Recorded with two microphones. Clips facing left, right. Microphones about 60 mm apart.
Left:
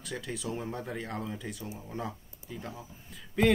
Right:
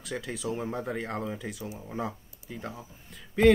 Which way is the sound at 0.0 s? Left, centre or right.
Centre.